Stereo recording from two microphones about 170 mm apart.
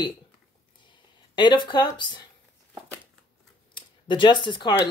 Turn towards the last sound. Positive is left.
turn(degrees=25)  # may be behind; listen again after turning